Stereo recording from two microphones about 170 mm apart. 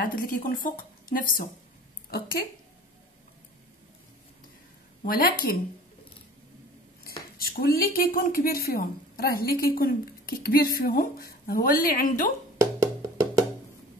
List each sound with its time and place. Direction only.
0.0 s a woman's voice: 55° left (ahead or behind)
5.0 s a woman's voice: 60° left (ahead or behind)
7.1 s speech: 65° left (ahead or behind)
12.5 s music: 20° right (ahead or behind)